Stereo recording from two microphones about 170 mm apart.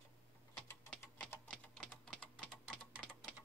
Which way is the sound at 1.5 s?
5° left (ahead or behind).